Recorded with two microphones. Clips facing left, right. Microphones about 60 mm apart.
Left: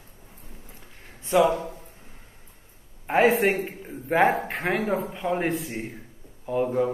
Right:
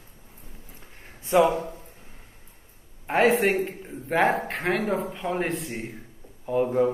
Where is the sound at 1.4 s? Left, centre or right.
Right.